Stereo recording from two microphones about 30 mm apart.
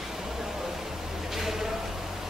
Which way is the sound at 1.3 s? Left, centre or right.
Centre.